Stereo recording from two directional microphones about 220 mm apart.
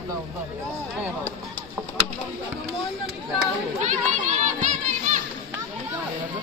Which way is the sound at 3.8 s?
35° right (ahead or behind).